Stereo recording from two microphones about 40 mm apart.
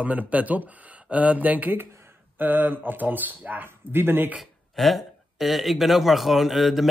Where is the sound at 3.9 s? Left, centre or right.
Right.